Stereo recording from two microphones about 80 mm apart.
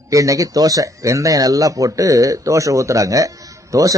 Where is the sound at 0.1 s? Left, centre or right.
Right.